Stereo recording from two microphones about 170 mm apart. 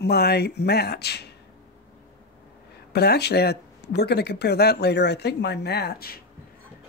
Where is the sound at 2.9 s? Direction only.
70° left (ahead or behind).